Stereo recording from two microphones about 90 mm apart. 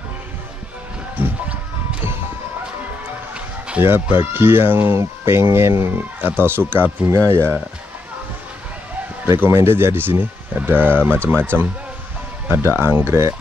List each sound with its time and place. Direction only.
1.1 s music: 20° right (ahead or behind)
3.3 s music: 15° right (ahead or behind)
3.8 s speech: 25° right (ahead or behind)
7.1 s speech: 30° right (ahead or behind)
9.2 s speech: 25° right (ahead or behind)
12.4 s speech: 25° right (ahead or behind)